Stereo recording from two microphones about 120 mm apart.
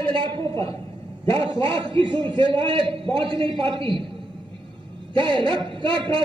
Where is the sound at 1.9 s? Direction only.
45° right (ahead or behind).